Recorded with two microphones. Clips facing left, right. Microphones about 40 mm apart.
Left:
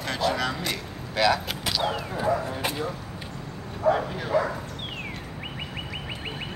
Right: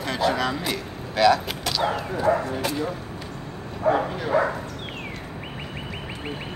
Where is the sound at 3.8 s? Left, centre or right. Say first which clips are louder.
Right 2 dB; right.